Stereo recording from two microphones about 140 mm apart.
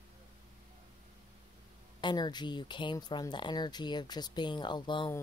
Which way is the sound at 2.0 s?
30° left (ahead or behind).